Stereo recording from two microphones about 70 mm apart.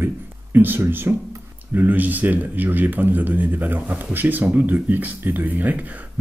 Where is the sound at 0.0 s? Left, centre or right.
Right.